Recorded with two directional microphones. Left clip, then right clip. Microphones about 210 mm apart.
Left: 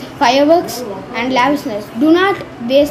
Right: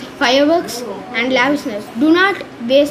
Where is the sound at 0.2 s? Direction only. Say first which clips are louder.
Left 3 dB; 15° right (ahead or behind).